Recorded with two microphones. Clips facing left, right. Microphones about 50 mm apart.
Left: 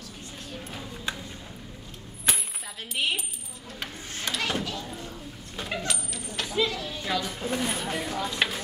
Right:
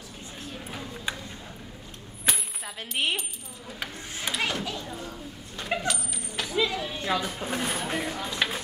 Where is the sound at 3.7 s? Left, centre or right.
Centre.